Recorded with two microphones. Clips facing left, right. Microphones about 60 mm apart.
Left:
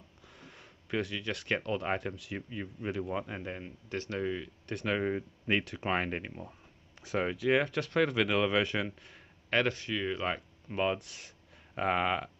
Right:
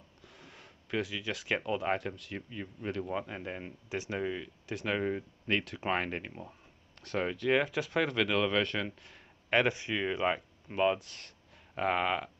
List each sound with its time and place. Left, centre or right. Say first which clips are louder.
0.2 s speech: even; centre
3.6 s speech: even; centre
9.5 s speech: right 1 dB; centre
10.7 s speech: right 2 dB; centre